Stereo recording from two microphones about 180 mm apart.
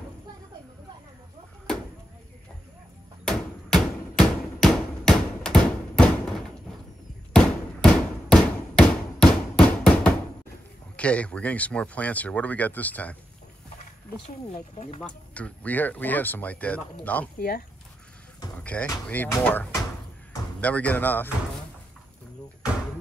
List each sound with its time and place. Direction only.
3.3 s a sound: 5° left (ahead or behind)
11.0 s speech: 5° left (ahead or behind)
14.2 s speech: 40° left (ahead or behind)
15.0 s speech: 5° left (ahead or behind)
17.4 s speech: 55° left (ahead or behind)
18.6 s speech: 5° left (ahead or behind)